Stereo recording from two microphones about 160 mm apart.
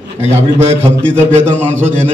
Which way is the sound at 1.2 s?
50° right (ahead or behind).